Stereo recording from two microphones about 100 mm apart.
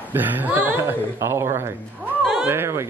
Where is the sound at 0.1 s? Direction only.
20° right (ahead or behind).